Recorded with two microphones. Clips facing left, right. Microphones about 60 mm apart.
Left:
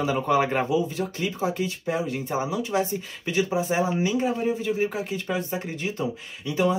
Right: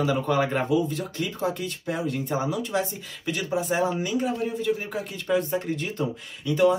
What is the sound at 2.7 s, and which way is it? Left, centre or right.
Speech, left.